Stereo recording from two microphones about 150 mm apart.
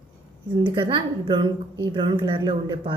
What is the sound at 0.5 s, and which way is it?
A woman's voice, 35° right (ahead or behind).